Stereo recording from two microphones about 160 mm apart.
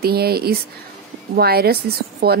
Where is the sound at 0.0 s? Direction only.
75° right (ahead or behind).